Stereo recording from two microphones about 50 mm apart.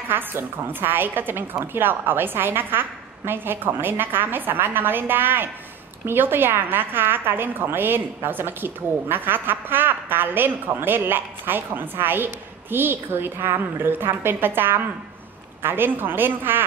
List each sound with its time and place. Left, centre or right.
0.1 s a woman's voice: right